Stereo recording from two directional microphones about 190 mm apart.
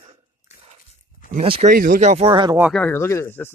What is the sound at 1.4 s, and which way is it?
Speech, 30° right (ahead or behind).